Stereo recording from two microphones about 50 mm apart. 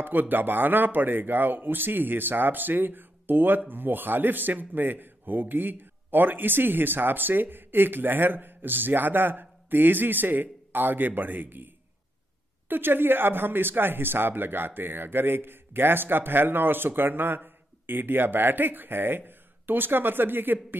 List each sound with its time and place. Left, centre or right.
0.0 s speech: right